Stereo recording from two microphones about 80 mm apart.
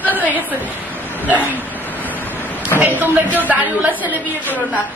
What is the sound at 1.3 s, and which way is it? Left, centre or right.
Speech, right.